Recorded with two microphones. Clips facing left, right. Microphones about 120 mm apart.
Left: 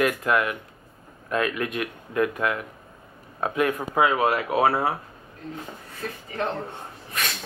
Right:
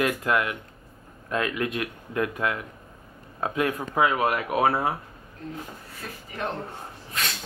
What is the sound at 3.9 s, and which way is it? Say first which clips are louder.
Speech: left 2 dB; 25° left (ahead or behind).